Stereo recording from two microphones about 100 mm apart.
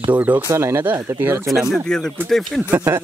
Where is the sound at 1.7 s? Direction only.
5° left (ahead or behind).